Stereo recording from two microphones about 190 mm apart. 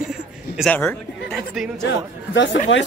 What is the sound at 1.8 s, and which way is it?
Speech, 70° left (ahead or behind).